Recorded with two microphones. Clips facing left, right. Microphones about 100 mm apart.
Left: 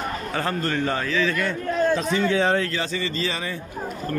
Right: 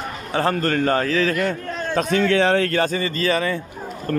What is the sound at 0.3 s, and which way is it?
Speech, 30° right (ahead or behind).